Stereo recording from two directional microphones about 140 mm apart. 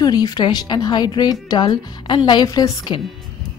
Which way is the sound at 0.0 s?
30° left (ahead or behind).